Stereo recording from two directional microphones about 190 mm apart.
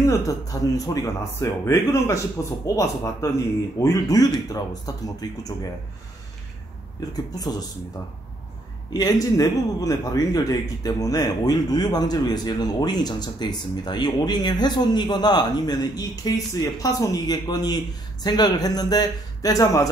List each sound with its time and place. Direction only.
0.0 s speech: 15° left (ahead or behind)
8.9 s speech: 20° left (ahead or behind)